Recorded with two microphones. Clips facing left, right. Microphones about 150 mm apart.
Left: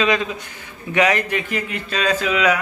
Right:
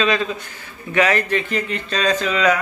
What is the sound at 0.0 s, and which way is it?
A man's voice, 15° left (ahead or behind).